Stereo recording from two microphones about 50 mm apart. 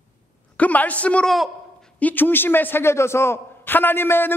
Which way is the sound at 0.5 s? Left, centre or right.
Left.